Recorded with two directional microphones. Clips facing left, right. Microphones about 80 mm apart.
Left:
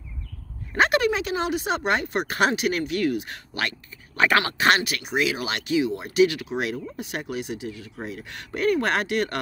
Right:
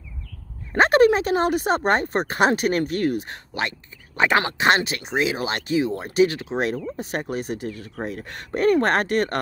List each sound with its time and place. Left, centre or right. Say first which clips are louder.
0.7 s speech: right 5 dB; right
2.5 s speech: right 3 dB; right
3.5 s speech: right 2 dB; right